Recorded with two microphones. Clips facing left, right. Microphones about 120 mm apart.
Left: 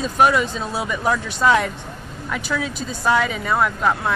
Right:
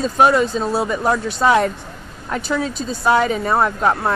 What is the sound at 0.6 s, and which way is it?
Speech, 35° right (ahead or behind).